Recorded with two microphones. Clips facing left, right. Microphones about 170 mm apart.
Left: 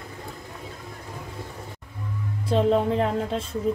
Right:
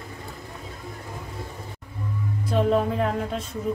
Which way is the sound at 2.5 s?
30° left (ahead or behind).